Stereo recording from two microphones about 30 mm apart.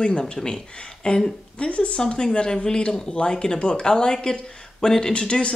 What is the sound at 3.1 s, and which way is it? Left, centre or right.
Speech, left.